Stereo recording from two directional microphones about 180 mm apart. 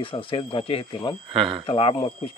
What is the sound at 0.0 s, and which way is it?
Speech, 30° left (ahead or behind).